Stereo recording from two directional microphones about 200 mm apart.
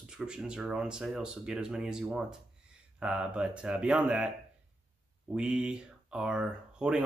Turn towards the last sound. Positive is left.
turn(degrees=-5)  # may be behind; listen again after turning